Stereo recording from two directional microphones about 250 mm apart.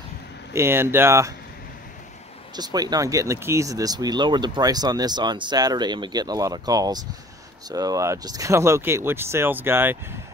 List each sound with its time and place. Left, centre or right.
0.5 s speech: centre
2.5 s speech: centre